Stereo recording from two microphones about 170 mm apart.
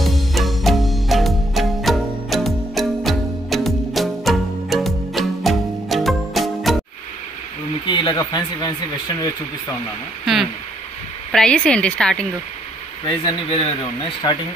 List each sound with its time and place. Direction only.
0.0 s music: centre (ahead or behind)
7.8 s a sound: 25° left (ahead or behind)
8.2 s speech: 25° left (ahead or behind)
10.2 s speech: centre (ahead or behind)
13.0 s speech: 25° left (ahead or behind)